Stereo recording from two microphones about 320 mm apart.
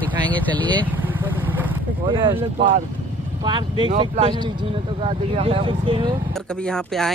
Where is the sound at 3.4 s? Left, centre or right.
Centre.